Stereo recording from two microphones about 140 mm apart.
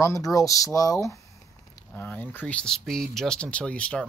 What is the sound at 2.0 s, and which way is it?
Speech, 15° left (ahead or behind).